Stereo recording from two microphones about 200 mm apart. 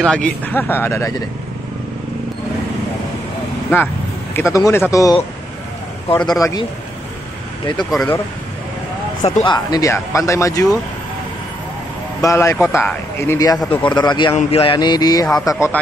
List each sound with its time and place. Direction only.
0.0 s speech: 5° left (ahead or behind)
4.4 s speech: 15° left (ahead or behind)
7.9 s speech: 5° left (ahead or behind)
9.2 s speech: 25° left (ahead or behind)
12.2 s speech: 15° left (ahead or behind)